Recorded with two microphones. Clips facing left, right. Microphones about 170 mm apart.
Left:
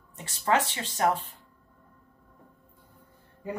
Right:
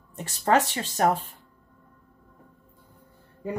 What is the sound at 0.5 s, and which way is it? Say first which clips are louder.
Speech: right 4 dB; 45° right (ahead or behind).